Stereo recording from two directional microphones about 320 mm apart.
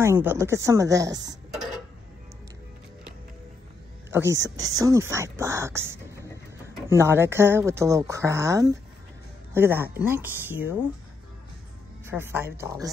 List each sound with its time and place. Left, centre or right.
0.0 s speech: centre
1.1 s speech: right
4.1 s speech: centre
12.1 s speech: centre